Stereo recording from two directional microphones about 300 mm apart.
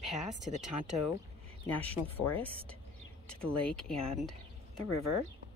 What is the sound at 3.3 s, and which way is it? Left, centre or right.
Speech, centre.